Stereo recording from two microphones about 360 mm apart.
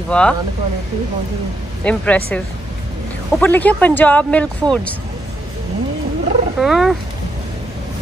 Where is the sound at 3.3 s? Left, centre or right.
Centre.